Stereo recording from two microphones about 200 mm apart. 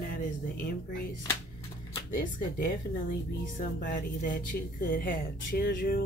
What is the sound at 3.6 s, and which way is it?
Speech, 45° left (ahead or behind).